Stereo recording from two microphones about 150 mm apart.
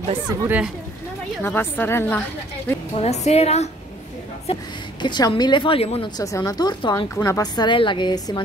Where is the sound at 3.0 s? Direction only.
45° left (ahead or behind).